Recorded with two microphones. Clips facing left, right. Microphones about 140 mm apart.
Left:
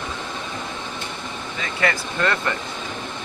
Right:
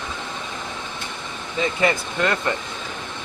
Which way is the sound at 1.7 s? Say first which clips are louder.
Left 1 dB; 20° right (ahead or behind).